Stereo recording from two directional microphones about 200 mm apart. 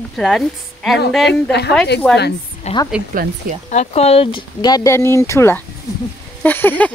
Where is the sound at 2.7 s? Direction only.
35° left (ahead or behind).